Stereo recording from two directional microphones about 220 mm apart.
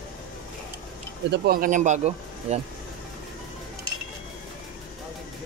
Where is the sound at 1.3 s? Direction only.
40° right (ahead or behind).